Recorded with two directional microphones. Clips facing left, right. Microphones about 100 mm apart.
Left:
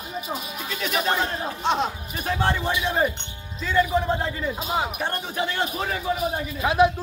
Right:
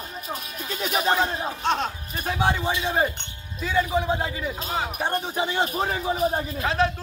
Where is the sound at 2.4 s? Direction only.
10° right (ahead or behind).